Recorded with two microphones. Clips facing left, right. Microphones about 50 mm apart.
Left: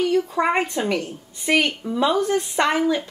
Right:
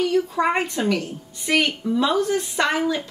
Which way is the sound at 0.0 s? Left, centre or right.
Centre.